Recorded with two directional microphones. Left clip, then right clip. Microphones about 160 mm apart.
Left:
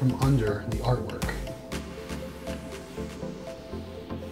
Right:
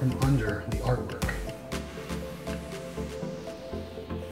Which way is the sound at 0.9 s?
Centre (ahead or behind).